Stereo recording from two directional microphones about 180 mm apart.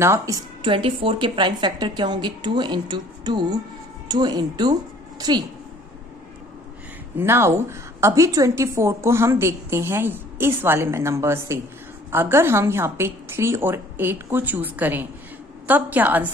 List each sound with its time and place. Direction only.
0.0 s a woman's voice: 15° right (ahead or behind)
7.2 s a woman's voice: 15° right (ahead or behind)